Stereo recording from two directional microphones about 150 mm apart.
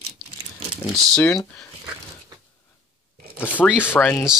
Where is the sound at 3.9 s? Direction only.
10° left (ahead or behind).